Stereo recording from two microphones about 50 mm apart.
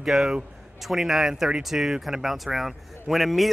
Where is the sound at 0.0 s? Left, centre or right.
Centre.